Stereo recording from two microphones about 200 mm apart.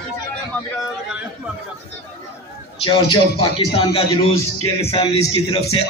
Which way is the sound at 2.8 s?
25° left (ahead or behind).